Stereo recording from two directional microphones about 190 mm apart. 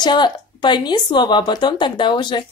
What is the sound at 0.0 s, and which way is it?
Speech, 25° left (ahead or behind).